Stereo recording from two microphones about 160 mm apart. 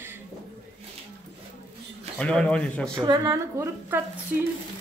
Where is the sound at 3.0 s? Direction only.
20° right (ahead or behind).